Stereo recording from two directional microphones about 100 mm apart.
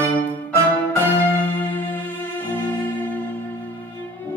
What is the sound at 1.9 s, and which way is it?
Music, 20° left (ahead or behind).